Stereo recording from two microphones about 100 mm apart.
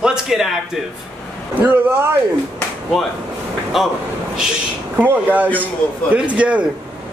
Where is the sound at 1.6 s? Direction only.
20° right (ahead or behind).